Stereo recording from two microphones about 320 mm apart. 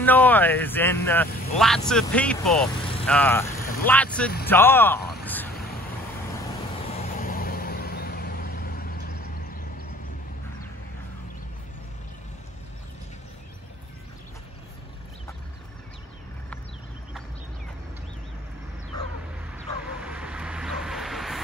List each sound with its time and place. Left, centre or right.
0.0 s speech: centre
1.3 s speech: left
1.9 s speech: centre
6.9 s vehicle: left
19.5 s vehicle: centre